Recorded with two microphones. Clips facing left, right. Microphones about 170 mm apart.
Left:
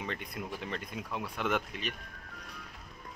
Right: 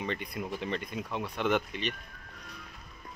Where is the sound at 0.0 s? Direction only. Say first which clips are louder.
Right 4 dB; centre (ahead or behind).